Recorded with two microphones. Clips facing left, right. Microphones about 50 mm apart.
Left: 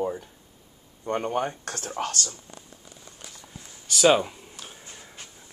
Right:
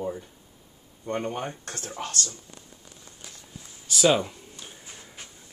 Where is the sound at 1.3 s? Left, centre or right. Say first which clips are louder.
Left 5 dB; left.